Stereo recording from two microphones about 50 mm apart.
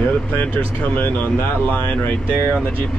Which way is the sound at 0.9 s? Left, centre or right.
Left.